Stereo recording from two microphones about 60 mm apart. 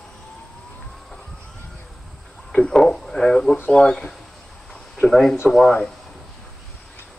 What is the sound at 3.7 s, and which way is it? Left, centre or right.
Speech, centre.